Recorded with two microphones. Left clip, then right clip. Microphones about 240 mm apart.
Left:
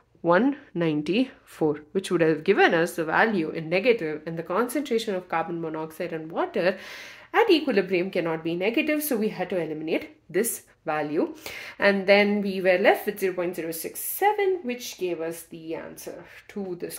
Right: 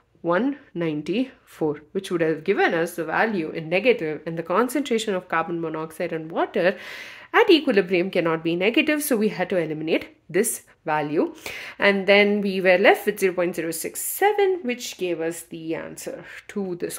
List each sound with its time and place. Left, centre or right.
0.2 s speech: centre
3.6 s a woman's voice: centre; by 15.8 s right
16.5 s speech: right